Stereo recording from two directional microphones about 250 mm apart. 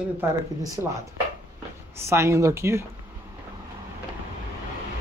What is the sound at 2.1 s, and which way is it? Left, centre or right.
Speech, centre.